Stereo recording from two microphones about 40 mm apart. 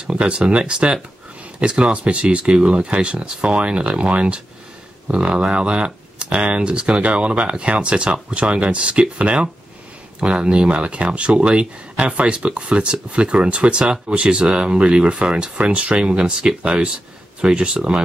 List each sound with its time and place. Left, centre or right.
0.0 s speech: right